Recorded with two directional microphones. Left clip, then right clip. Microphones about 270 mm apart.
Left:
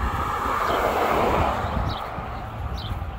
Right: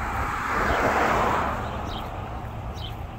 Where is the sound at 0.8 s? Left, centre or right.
Left.